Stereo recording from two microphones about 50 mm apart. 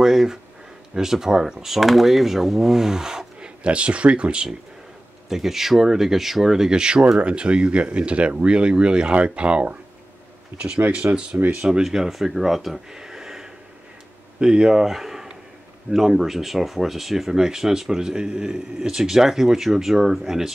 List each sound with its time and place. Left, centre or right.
0.0 s speech: centre
5.3 s speech: centre; by 9.8 s right
10.8 s speech: right
11.6 s speech: centre
12.9 s a sound: centre
14.4 s speech: centre